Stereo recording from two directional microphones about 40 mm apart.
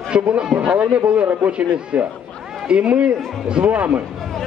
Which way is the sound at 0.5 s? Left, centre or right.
Right.